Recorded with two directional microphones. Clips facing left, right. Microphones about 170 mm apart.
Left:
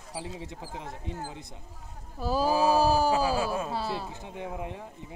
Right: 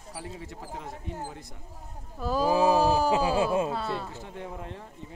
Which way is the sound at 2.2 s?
5° left (ahead or behind).